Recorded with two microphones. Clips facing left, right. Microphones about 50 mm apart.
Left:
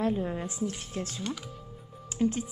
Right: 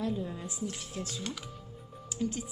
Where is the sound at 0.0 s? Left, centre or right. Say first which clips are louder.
Left 5 dB; left.